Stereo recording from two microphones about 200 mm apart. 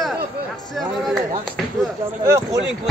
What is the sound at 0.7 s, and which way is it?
Speech, centre (ahead or behind).